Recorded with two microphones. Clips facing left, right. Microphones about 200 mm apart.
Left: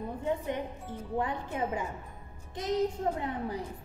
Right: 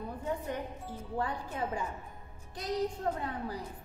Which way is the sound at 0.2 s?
20° left (ahead or behind).